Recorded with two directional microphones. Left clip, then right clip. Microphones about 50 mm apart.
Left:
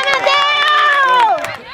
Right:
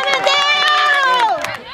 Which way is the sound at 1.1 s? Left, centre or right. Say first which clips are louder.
Left 3 dB; right.